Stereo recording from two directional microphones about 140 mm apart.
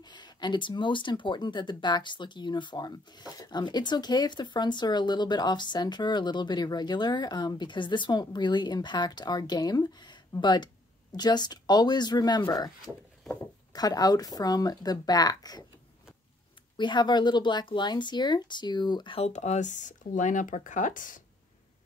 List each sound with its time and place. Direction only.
0.0 s speech: 30° left (ahead or behind)
12.8 s speech: centre (ahead or behind)
13.7 s speech: 25° left (ahead or behind)
16.7 s speech: 35° left (ahead or behind); by 21.2 s 70° left (ahead or behind)